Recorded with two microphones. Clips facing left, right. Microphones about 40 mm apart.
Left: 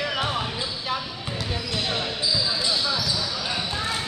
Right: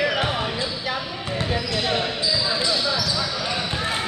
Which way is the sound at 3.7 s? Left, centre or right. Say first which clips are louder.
Right 2 dB; right.